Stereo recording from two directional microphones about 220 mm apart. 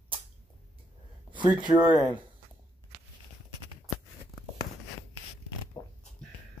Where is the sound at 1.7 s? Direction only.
20° right (ahead or behind).